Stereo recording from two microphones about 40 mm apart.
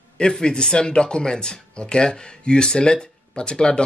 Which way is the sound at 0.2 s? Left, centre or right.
Centre.